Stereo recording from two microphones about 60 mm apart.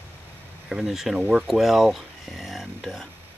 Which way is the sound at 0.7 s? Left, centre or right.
Centre.